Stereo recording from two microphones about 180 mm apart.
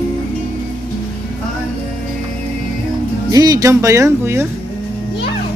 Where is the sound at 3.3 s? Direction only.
20° right (ahead or behind).